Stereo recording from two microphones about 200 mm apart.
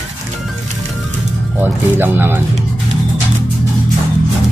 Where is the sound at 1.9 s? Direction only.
10° right (ahead or behind).